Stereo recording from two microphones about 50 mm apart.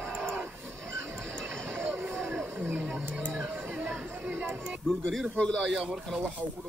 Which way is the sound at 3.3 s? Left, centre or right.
Right.